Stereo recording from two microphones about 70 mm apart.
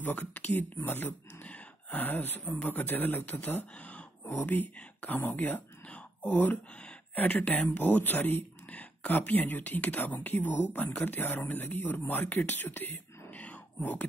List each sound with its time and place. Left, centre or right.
0.0 s speech: left